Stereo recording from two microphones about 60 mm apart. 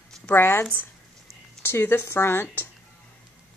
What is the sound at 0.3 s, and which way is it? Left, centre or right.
Speech, left.